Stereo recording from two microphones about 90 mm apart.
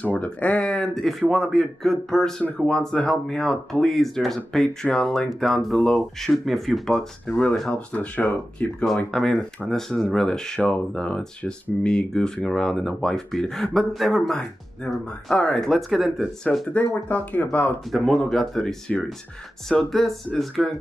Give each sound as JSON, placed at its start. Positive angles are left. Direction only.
{"t": 0.0, "sound": "speech", "side_deg": 15}
{"t": 16.6, "sound": "speech", "side_deg": 15}
{"t": 17.9, "sound": "speech", "side_deg": 5}